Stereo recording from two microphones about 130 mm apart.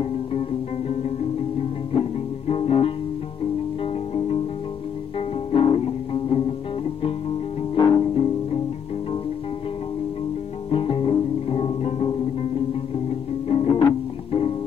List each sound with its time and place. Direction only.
0.0 s music: 50° left (ahead or behind)
5.5 s music: 45° left (ahead or behind)
10.7 s music: 45° left (ahead or behind)
13.5 s music: 50° left (ahead or behind)